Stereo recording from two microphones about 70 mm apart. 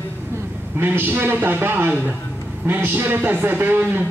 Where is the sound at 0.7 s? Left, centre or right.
Right.